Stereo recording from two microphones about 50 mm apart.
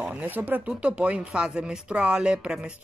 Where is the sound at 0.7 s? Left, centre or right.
Right.